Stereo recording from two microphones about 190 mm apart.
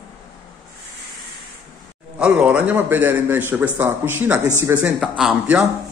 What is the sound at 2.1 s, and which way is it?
A man's voice, 5° right (ahead or behind).